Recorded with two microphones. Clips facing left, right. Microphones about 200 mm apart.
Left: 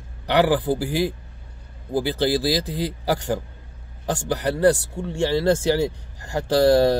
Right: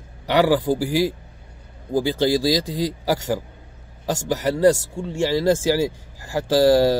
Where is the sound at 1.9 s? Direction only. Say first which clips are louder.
Right 2 dB; 15° right (ahead or behind).